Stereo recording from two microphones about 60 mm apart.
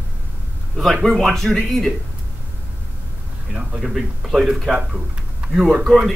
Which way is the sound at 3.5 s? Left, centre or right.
Centre.